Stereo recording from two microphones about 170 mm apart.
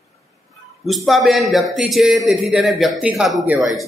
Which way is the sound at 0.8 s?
Centre (ahead or behind).